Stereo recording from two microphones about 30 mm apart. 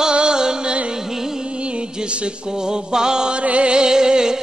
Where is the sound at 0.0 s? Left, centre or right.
Right.